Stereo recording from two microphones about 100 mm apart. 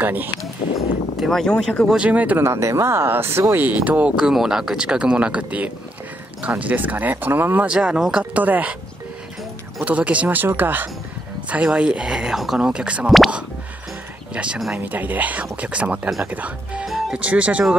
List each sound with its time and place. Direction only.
0.0 s speech: 20° right (ahead or behind)
1.1 s speech: centre (ahead or behind)
2.0 s speech: 15° right (ahead or behind)
2.4 s speech: 25° right (ahead or behind)
9.8 s speech: 15° right (ahead or behind)
14.3 s speech: 10° right (ahead or behind)